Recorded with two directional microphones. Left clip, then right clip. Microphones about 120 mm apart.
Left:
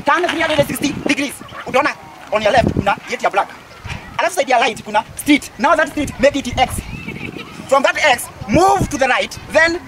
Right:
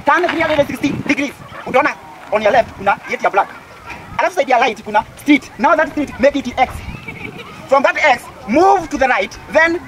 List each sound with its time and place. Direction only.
0.0 s a woman's voice: 5° left (ahead or behind)